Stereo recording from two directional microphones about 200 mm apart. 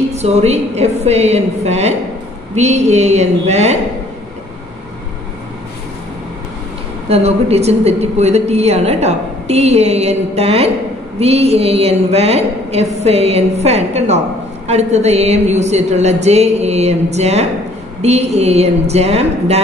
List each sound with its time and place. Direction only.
0.1 s a woman's voice: 35° right (ahead or behind)
7.1 s a woman's voice: 30° right (ahead or behind)